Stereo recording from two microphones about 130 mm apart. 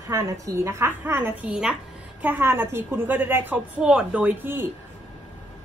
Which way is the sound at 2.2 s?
15° right (ahead or behind).